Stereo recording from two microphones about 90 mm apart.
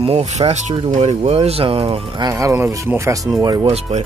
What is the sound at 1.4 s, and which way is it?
Speech, 90° right.